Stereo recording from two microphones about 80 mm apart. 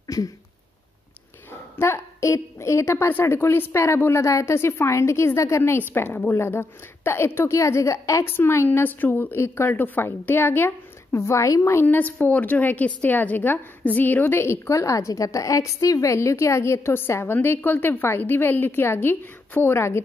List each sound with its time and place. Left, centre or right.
0.0 s a sound: left
1.8 s a woman's voice: left
11.8 s a woman's voice: left